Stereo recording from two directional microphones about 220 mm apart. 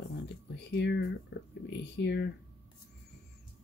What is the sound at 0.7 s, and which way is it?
Speech, 50° left (ahead or behind).